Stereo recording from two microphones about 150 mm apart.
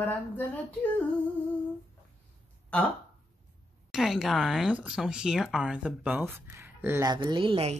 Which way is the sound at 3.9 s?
5° right (ahead or behind).